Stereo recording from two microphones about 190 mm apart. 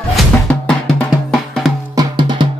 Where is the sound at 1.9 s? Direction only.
25° right (ahead or behind).